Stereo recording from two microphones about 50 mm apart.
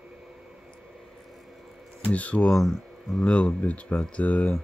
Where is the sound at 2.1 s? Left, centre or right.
Left.